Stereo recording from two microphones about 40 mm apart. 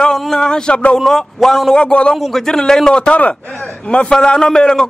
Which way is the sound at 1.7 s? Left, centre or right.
Left.